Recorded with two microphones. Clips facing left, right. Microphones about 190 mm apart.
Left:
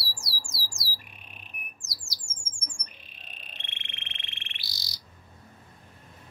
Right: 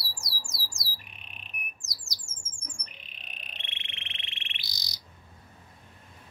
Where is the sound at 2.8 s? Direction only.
20° right (ahead or behind).